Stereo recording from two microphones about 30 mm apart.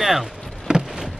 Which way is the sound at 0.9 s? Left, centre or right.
Centre.